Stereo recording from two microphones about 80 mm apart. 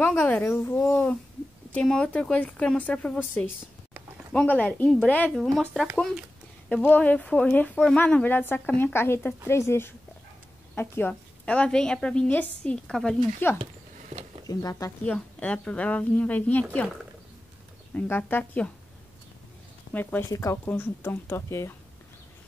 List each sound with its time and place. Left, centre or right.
0.0 s a woman's voice: left
1.7 s a woman's voice: centre
5.3 s speech: centre
6.7 s a woman's voice: left
12.7 s a woman's voice: centre
13.4 s a woman's voice: left
14.5 s speech: left
15.0 s a woman's voice: centre
17.9 s a woman's voice: left
19.9 s a woman's voice: left
20.2 s speech: left
20.6 s speech: left